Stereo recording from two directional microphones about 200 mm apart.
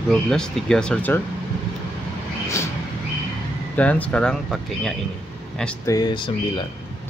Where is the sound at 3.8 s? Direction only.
5° left (ahead or behind).